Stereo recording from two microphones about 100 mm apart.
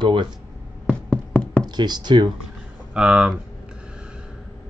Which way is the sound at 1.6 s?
45° right (ahead or behind).